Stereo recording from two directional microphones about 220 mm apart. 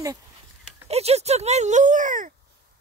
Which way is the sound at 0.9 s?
30° right (ahead or behind).